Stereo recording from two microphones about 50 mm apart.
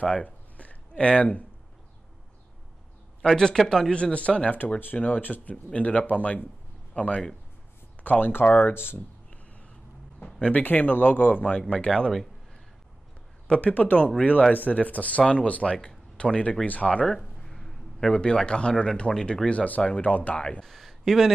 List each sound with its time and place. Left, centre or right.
0.0 s a sound: left
3.2 s speech: centre
4.7 s speech: left
8.0 s speech: left
10.2 s speech: left
10.6 s speech: left
11.7 s speech: centre
13.7 s speech: left
17.0 s speech: centre
20.0 s speech: left
20.6 s speech: centre